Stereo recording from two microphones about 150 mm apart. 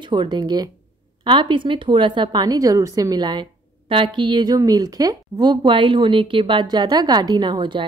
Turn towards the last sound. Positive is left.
turn(degrees=-30)  # may be behind; listen again after turning